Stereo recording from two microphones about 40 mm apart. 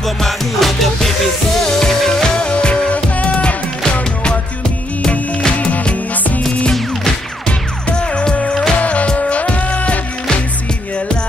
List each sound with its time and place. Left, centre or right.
0.0 s music: centre
2.3 s music: left
2.9 s music: left
7.4 s music: left